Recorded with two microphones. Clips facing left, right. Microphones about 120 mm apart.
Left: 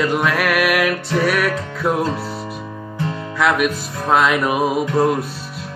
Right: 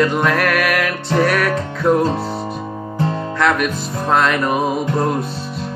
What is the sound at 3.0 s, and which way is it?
Music, 35° right (ahead or behind).